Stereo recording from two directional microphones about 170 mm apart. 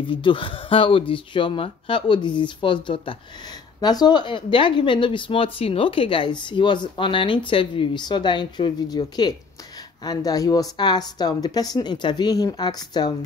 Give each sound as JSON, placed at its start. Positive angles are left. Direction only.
{"t": 0.0, "sound": "speech", "side_deg": 30}